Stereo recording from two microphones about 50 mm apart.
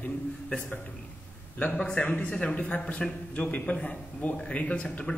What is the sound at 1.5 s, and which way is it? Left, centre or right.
A man's voice, left.